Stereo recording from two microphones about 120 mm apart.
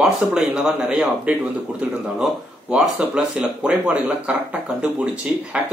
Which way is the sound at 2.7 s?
5° right (ahead or behind).